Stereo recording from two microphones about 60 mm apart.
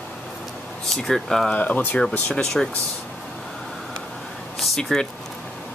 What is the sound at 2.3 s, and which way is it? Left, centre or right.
Speech, centre.